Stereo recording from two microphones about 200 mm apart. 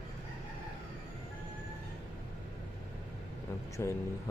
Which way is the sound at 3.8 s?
15° left (ahead or behind).